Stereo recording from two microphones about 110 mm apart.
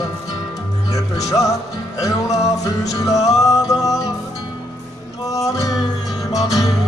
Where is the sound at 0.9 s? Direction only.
30° left (ahead or behind).